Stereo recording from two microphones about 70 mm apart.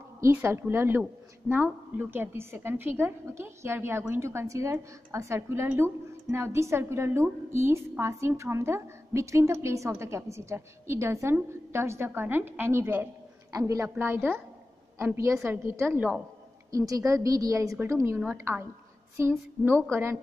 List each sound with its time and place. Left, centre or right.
0.2 s a woman's voice: right
13.5 s a woman's voice: right
13.9 s a woman's voice: right
15.9 s a woman's voice: right
16.7 s a woman's voice: right